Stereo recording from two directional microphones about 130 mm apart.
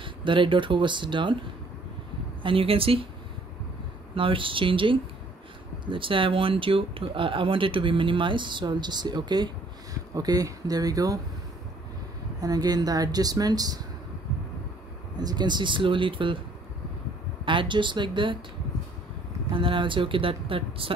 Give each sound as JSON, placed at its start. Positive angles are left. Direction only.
{"t": 0.0, "sound": "speech", "side_deg": -40}
{"t": 2.4, "sound": "speech", "side_deg": -45}
{"t": 4.1, "sound": "speech", "side_deg": -40}
{"t": 12.4, "sound": "speech", "side_deg": -30}
{"t": 15.1, "sound": "speech", "side_deg": -35}
{"t": 17.5, "sound": "speech", "side_deg": -40}
{"t": 19.5, "sound": "speech", "side_deg": -40}